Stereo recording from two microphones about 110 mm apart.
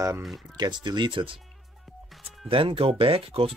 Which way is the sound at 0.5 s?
40° right (ahead or behind).